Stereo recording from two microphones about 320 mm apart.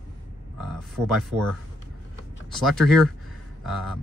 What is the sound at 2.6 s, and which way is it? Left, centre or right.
Speech, centre.